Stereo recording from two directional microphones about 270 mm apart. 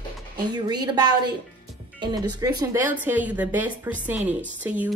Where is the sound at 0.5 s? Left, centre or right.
Centre.